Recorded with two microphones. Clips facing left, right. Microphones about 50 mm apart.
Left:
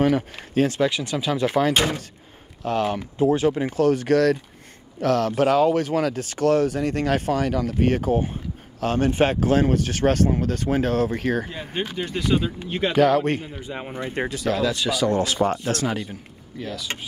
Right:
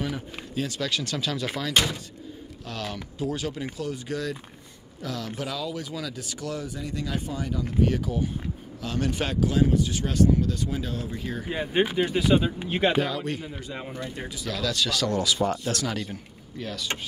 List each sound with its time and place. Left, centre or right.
0.0 s speech: left
0.7 s speech: left
2.6 s speech: left
3.7 s speech: left
7.9 s speech: left
11.5 s speech: centre
12.9 s speech: left
13.2 s speech: left
13.6 s speech: left
14.1 s speech: left
14.5 s speech: left
16.1 s a man's voice: centre